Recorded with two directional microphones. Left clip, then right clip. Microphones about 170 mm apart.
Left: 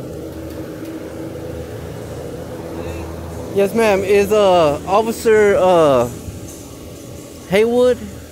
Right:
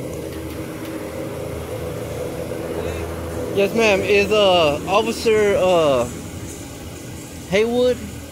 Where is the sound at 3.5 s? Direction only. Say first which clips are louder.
Left 2 dB; 25° left (ahead or behind).